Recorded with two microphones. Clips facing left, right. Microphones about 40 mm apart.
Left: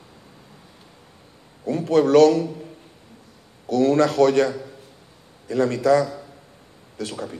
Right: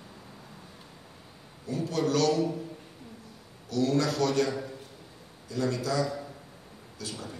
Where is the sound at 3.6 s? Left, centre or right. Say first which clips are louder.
Left 9 dB; left.